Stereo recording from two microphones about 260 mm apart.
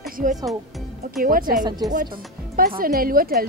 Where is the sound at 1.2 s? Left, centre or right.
Right.